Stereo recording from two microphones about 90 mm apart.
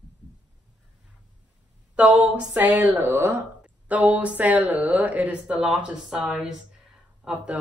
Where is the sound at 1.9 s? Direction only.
15° right (ahead or behind).